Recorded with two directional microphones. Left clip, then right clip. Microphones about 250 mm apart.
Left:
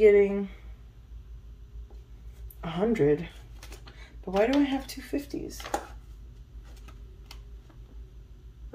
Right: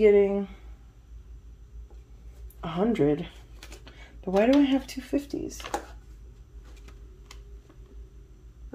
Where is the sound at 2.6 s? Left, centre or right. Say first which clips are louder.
Even; right.